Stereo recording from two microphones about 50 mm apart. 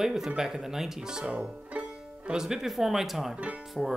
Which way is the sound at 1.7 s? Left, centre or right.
Right.